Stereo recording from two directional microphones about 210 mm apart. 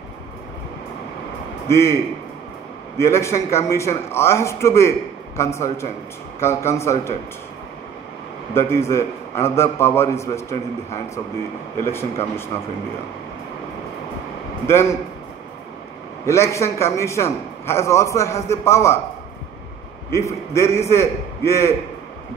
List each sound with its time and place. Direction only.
1.7 s a man's voice: 15° left (ahead or behind)
3.0 s a man's voice: 15° left (ahead or behind)
8.5 s a man's voice: 10° left (ahead or behind)
11.8 s a man's voice: 10° left (ahead or behind)
14.7 s a man's voice: 10° left (ahead or behind)
16.3 s a man's voice: 15° left (ahead or behind)
20.1 s a man's voice: 15° left (ahead or behind)